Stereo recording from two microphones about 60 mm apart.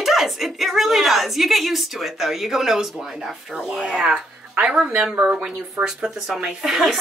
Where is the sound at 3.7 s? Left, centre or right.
Centre.